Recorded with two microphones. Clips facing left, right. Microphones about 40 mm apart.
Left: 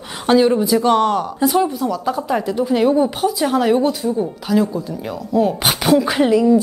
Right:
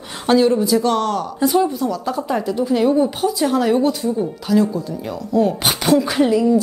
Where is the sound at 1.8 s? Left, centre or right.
Centre.